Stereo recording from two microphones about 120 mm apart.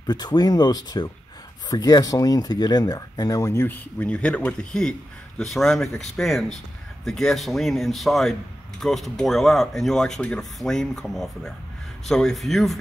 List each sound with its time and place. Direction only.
0.0 s speech: 35° left (ahead or behind); by 12.7 s centre (ahead or behind)